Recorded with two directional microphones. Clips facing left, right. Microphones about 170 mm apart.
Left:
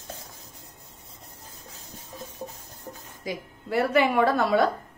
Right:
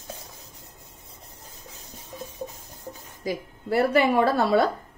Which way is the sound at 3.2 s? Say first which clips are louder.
Right 4 dB; 35° right (ahead or behind).